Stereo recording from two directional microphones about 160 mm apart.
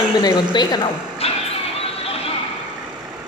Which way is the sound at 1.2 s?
40° left (ahead or behind).